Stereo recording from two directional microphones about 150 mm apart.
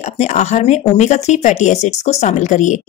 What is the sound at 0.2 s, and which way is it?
Speech, 50° left (ahead or behind).